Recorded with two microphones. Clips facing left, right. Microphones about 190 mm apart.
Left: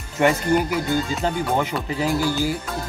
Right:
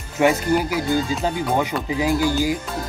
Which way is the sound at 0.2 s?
5° right (ahead or behind).